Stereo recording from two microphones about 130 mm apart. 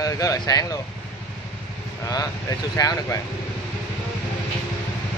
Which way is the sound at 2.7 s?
25° left (ahead or behind).